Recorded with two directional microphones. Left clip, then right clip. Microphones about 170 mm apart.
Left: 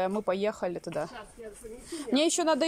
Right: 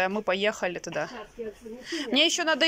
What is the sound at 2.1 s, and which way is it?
Speech, 20° left (ahead or behind).